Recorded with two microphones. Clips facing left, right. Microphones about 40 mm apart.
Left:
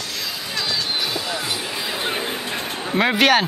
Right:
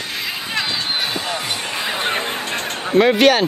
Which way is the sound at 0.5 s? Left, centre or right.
Right.